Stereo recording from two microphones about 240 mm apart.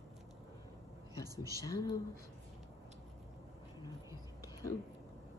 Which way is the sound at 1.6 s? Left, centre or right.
Centre.